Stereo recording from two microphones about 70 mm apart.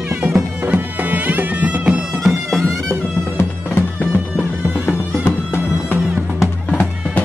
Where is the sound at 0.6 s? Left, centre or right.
Right.